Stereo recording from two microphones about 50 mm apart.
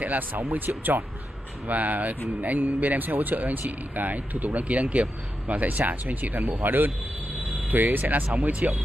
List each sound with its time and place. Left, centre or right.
0.0 s speech: right